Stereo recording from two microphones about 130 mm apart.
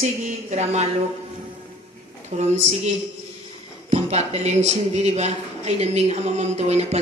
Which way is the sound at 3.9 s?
55° right (ahead or behind).